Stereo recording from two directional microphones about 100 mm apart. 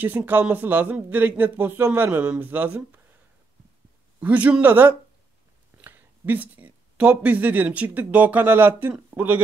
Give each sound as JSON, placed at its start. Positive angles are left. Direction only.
{"t": 0.0, "sound": "speech", "side_deg": -20}
{"t": 4.2, "sound": "a woman's voice", "side_deg": -15}